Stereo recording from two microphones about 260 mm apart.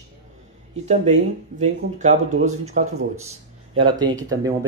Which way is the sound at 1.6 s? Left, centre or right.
Right.